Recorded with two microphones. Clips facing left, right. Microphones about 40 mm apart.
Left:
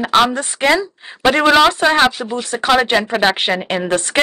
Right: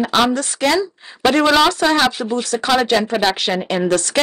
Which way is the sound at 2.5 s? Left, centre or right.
Left.